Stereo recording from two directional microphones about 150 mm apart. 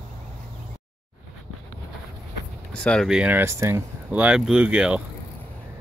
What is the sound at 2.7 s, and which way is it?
Speech, 5° left (ahead or behind).